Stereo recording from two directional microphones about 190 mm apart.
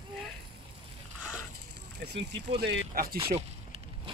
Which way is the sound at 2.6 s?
60° right (ahead or behind).